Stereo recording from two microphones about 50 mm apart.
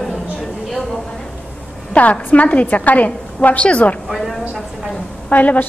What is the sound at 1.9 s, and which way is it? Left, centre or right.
A woman's voice, left.